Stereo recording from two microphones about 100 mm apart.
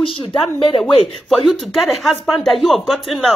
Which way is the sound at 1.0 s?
5° left (ahead or behind).